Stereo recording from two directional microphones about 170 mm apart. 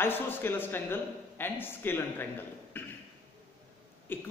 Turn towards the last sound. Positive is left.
turn(degrees=10)  # may be behind; listen again after turning